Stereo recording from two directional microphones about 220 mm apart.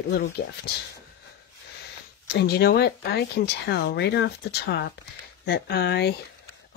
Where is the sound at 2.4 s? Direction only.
45° left (ahead or behind).